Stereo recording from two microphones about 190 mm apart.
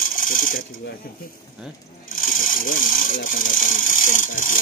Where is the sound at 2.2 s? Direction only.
45° left (ahead or behind).